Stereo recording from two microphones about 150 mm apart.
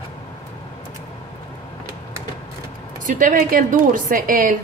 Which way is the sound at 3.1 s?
65° right (ahead or behind).